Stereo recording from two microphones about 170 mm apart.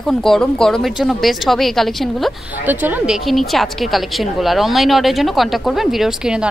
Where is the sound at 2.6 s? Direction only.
10° right (ahead or behind).